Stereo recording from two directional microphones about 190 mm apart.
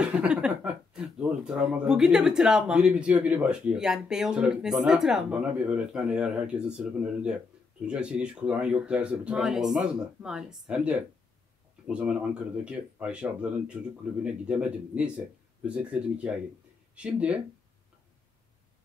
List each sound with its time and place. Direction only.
0.0 s speech: 5° right (ahead or behind)